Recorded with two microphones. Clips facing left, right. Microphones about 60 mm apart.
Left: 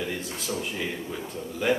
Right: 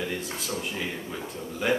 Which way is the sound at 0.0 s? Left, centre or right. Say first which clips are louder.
Even; centre.